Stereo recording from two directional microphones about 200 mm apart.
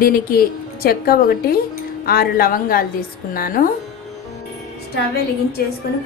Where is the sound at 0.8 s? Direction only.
50° left (ahead or behind).